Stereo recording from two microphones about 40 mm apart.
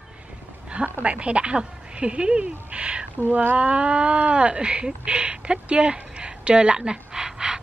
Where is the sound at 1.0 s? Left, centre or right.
Right.